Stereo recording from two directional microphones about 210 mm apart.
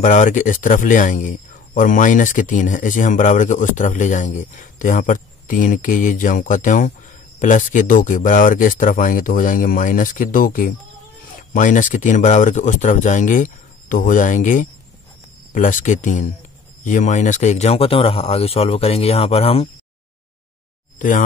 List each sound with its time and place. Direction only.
0.0 s speech: 35° left (ahead or behind)